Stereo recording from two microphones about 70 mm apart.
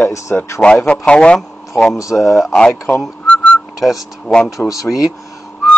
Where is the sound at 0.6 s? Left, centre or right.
Centre.